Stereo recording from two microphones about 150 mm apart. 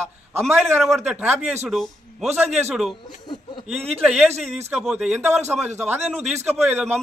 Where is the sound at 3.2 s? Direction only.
30° left (ahead or behind).